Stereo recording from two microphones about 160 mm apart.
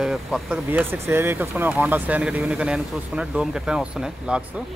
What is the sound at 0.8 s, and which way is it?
Speech, 15° right (ahead or behind).